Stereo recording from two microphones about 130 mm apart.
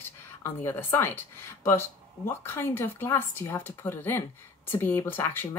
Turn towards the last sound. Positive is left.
turn(degrees=20)  # may be behind; listen again after turning